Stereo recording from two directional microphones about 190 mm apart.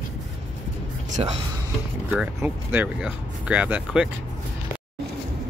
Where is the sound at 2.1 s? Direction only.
5° right (ahead or behind).